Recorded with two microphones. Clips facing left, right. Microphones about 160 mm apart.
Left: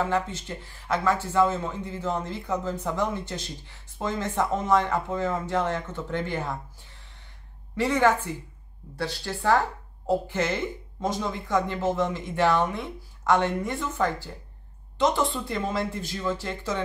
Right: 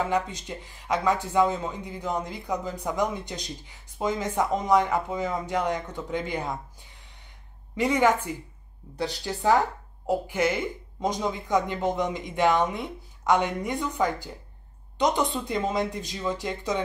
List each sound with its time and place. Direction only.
0.0 s speech: 15° right (ahead or behind)